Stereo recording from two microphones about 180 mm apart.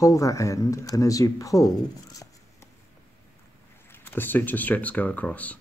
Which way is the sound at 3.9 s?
10° left (ahead or behind).